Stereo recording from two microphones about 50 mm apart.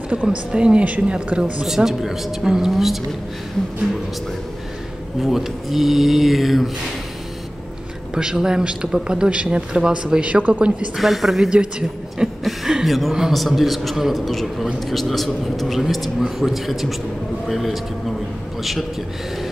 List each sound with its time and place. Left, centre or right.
0.1 s a woman's voice: right
1.8 s a man's voice: centre
5.2 s a man's voice: centre
8.1 s speech: centre
10.3 s a woman's voice: right
11.0 s a man's voice: centre
12.2 s a sound: centre
12.8 s a man's voice: centre